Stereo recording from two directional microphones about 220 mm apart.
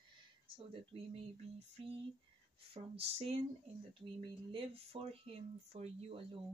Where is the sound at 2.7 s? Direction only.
25° right (ahead or behind).